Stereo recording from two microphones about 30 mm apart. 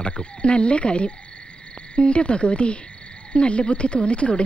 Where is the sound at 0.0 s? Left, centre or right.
Left.